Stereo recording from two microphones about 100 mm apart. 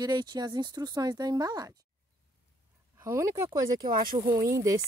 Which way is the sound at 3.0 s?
30° right (ahead or behind).